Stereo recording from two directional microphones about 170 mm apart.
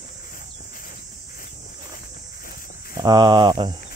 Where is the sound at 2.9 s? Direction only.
25° right (ahead or behind).